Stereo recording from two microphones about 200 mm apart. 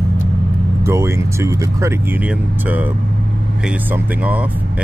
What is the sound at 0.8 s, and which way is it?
Speech, 15° right (ahead or behind).